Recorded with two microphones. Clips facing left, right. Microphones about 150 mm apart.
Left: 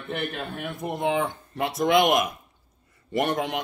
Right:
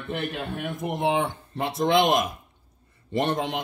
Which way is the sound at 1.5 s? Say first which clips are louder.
Left 1 dB; 25° right (ahead or behind).